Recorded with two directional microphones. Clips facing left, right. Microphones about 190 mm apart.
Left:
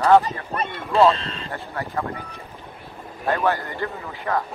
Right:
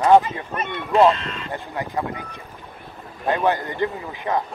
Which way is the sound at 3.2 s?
20° right (ahead or behind).